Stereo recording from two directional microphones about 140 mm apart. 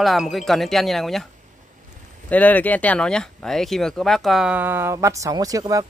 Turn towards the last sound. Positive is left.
turn(degrees=-25)  # may be behind; listen again after turning